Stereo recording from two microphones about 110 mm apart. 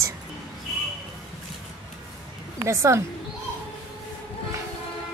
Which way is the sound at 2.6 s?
30° right (ahead or behind).